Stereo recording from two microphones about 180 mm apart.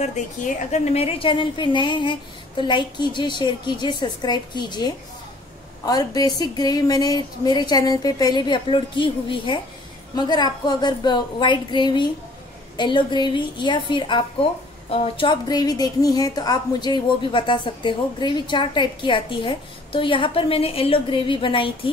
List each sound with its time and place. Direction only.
0.0 s a woman's voice: 40° left (ahead or behind)